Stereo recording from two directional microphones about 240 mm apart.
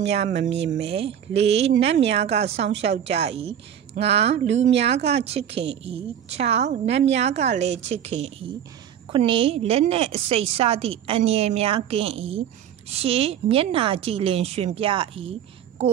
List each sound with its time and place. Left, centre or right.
0.3 s speech: right
0.6 s a woman's voice: right